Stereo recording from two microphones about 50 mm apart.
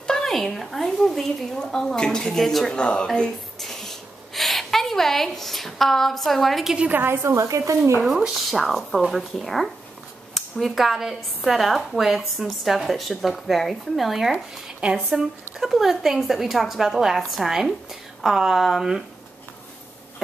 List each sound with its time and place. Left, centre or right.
0.0 s a woman's voice: centre
2.7 s speech: left
3.5 s a sound: centre
7.0 s speech: right
8.4 s a woman's voice: centre
14.8 s speech: centre
15.6 s a woman's voice: centre